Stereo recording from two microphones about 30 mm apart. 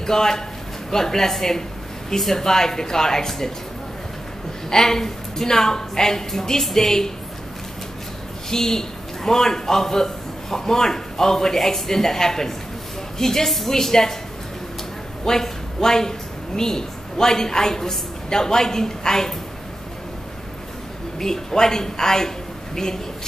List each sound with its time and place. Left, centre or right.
0.0 s a man's voice: centre
4.6 s a man's voice: centre
8.5 s a man's voice: centre
15.2 s a woman's voice: centre
21.2 s speech: centre